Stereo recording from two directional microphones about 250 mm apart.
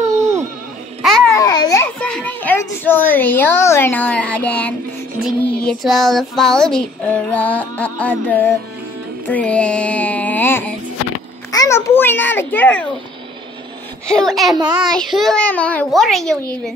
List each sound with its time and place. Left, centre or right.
1.3 s babbling: centre
2.0 s children playing: centre
2.8 s speech: centre
14.0 s speech: centre
14.5 s a child's voice: centre
14.8 s speech: centre